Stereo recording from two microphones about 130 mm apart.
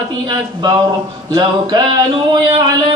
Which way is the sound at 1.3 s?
30° right (ahead or behind).